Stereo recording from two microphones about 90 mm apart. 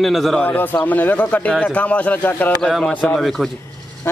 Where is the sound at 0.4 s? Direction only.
20° left (ahead or behind).